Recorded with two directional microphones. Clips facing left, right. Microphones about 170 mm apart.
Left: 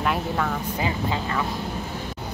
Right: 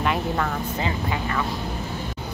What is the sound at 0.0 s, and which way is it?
Vehicle, centre (ahead or behind).